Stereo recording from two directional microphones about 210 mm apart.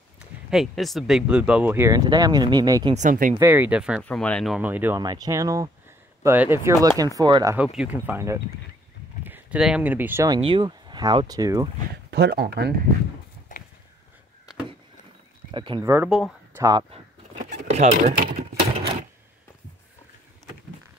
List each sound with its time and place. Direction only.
0.5 s speech: centre (ahead or behind); by 2.9 s 20° right (ahead or behind)
2.9 s speech: 35° right (ahead or behind)
3.3 s speech: 10° right (ahead or behind)
4.6 s speech: 10° right (ahead or behind)
7.5 s speech: 5° right (ahead or behind)
12.1 s speech: 50° right (ahead or behind)
15.5 s speech: 25° right (ahead or behind)
15.8 s speech: 10° right (ahead or behind)
17.5 s a sound: 30° right (ahead or behind)